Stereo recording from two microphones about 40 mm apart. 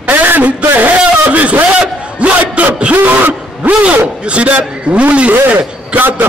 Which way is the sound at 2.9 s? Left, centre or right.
Right.